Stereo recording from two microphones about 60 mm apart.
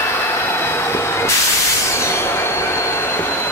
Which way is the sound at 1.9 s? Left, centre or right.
Left.